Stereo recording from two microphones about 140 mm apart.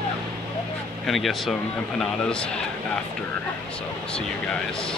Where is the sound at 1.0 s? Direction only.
Centre (ahead or behind).